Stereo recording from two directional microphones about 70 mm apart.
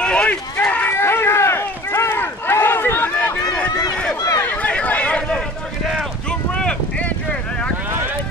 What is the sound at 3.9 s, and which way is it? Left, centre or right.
Run, centre.